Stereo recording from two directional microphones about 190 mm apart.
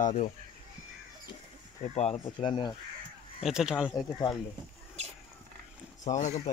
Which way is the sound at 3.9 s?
20° left (ahead or behind).